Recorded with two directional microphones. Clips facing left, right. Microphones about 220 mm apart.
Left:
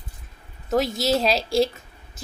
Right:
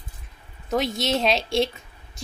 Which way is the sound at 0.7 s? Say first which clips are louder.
Left 2 dB; centre (ahead or behind).